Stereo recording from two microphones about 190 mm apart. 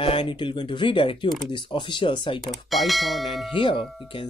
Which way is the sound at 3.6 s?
25° left (ahead or behind).